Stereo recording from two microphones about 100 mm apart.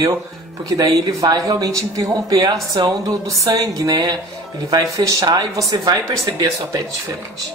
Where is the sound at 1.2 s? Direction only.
40° right (ahead or behind).